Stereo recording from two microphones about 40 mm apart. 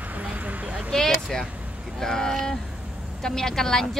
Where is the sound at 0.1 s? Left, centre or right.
Right.